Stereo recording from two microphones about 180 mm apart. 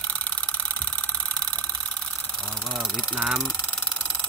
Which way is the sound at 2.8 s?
5° right (ahead or behind).